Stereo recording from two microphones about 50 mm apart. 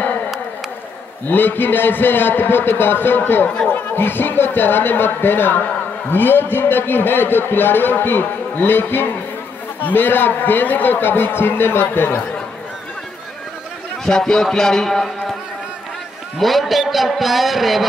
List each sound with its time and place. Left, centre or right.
1.3 s a man's voice: left
3.4 s speech: left
3.9 s a man's voice: left
14.0 s a man's voice: centre
16.3 s a man's voice: centre